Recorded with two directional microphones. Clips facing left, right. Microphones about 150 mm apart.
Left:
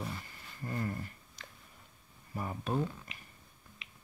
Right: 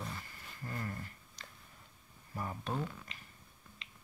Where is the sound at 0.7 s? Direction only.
25° left (ahead or behind).